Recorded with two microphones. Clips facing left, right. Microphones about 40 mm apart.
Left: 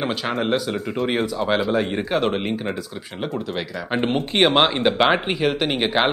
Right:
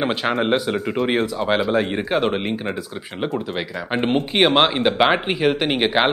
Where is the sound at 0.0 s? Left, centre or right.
Centre.